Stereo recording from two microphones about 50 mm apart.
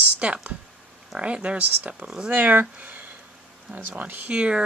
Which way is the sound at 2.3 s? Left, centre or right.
Right.